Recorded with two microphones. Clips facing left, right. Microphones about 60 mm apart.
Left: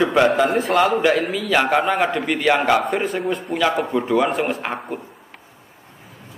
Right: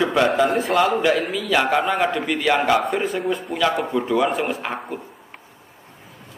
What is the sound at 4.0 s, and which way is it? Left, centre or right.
Speech, centre.